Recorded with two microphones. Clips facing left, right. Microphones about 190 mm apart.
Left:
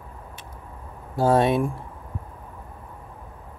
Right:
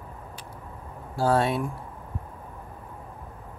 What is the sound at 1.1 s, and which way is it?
Speech, 20° left (ahead or behind).